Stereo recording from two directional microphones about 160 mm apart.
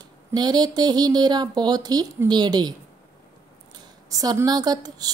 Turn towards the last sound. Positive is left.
turn(degrees=-25)  # may be behind; listen again after turning